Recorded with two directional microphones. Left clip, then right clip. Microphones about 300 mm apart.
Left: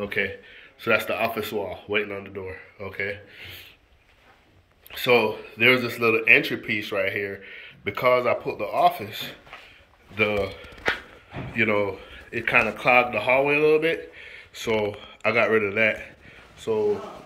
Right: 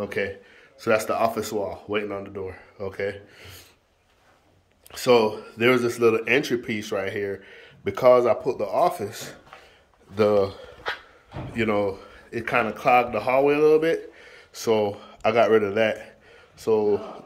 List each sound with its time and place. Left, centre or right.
0.0 s speech: centre
5.0 s speech: centre